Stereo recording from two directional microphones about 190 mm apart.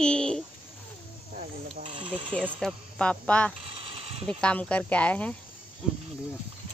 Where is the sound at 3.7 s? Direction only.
30° right (ahead or behind).